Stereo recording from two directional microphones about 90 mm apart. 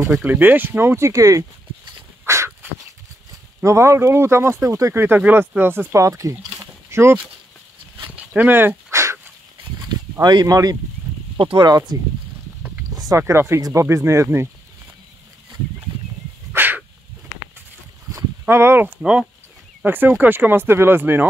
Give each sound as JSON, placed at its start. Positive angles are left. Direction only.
{"t": 0.2, "sound": "speech", "side_deg": -20}
{"t": 2.0, "sound": "crow", "side_deg": -30}
{"t": 3.6, "sound": "speech", "side_deg": -30}
{"t": 8.2, "sound": "dog", "side_deg": -15}
{"t": 9.6, "sound": "a sound", "side_deg": -55}
{"t": 10.2, "sound": "speech", "side_deg": -45}
{"t": 11.3, "sound": "speech", "side_deg": -65}
{"t": 12.9, "sound": "a sound", "side_deg": -45}
{"t": 13.2, "sound": "speech", "side_deg": -30}
{"t": 13.6, "sound": "speech", "side_deg": -45}
{"t": 13.8, "sound": "speech", "side_deg": -30}
{"t": 16.5, "sound": "dog", "side_deg": -20}
{"t": 18.4, "sound": "speech", "side_deg": -25}
{"t": 18.9, "sound": "speech", "side_deg": -10}